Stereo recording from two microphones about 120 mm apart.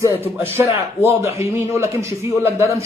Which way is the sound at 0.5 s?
20° right (ahead or behind).